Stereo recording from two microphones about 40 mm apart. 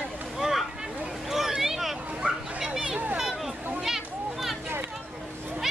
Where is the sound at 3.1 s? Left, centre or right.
Centre.